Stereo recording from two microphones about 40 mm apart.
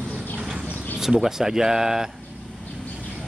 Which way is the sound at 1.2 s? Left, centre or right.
Centre.